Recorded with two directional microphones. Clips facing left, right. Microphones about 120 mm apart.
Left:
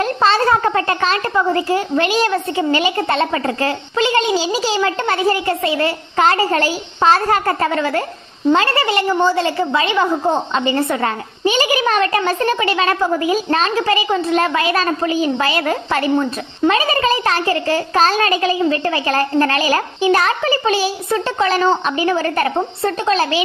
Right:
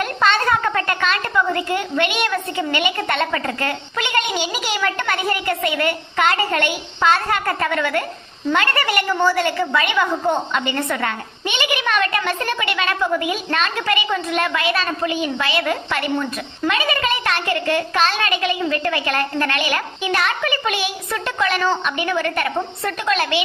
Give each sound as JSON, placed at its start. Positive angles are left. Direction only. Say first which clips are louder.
{"t": 0.0, "sound": "a woman's voice", "louder": "left 4 dB", "side_deg": 30}